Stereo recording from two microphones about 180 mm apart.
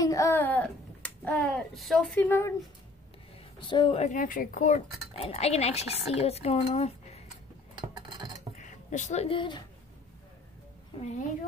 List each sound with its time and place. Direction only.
0.0 s a child's voice: 20° left (ahead or behind)
3.5 s a woman's voice: 25° left (ahead or behind)
4.1 s speech: 50° left (ahead or behind)
5.1 s speech: 35° left (ahead or behind)
8.5 s speech: 40° left (ahead or behind)
11.0 s speech: 40° left (ahead or behind)